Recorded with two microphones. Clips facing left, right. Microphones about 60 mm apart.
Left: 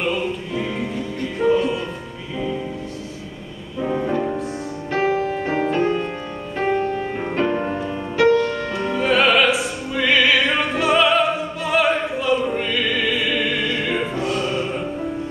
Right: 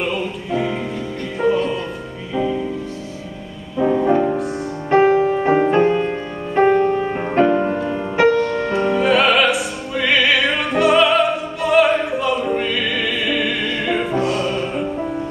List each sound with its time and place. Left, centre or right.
4.0 s music: centre
8.2 s music: right
8.8 s opera: centre
14.4 s music: centre